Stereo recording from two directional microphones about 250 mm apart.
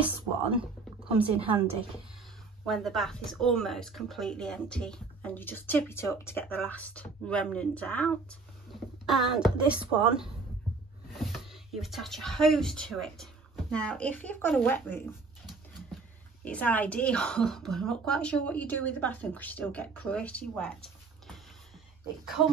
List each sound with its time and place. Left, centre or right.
0.0 s a sound: right
1.4 s a woman's voice: right
2.6 s speech: centre
16.4 s speech: centre